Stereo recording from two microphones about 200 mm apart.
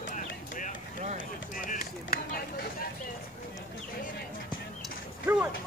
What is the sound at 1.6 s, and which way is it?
Run, 45° left (ahead or behind).